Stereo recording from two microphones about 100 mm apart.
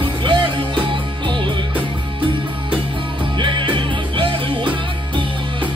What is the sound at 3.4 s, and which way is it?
Music, 55° right (ahead or behind).